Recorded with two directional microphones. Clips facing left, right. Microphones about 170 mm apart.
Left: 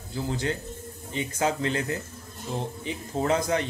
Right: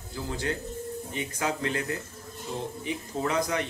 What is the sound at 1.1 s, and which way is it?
Speech, 25° left (ahead or behind).